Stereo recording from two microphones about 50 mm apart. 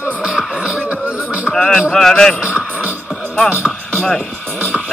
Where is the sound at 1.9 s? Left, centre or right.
Centre.